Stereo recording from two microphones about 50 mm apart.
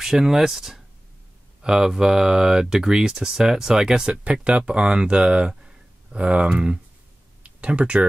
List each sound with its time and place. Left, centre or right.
0.0 s speech: centre; by 8.1 s right